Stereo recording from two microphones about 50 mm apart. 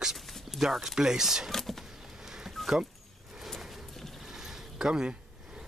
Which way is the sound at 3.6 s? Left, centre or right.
Centre.